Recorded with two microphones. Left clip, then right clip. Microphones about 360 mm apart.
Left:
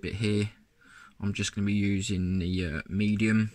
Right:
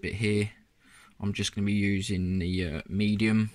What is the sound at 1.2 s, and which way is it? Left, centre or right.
Speech, centre.